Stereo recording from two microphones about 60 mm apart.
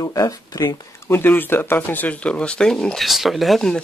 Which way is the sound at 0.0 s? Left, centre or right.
Left.